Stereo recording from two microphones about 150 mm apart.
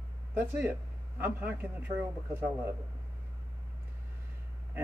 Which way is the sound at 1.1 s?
15° right (ahead or behind).